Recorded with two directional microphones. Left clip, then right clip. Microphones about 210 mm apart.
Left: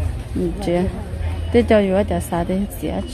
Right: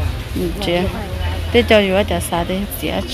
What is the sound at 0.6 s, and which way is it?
Speech, 20° left (ahead or behind).